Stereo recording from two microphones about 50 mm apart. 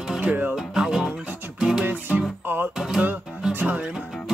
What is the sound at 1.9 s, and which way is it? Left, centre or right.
Music, right.